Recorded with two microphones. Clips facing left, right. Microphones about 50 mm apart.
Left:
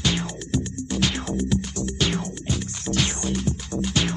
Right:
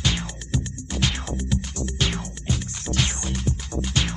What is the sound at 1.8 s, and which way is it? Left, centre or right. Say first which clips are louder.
Music: left 2 dB; centre.